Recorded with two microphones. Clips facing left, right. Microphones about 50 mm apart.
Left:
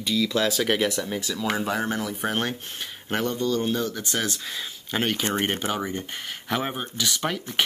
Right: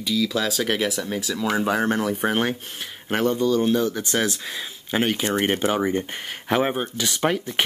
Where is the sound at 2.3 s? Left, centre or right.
Centre.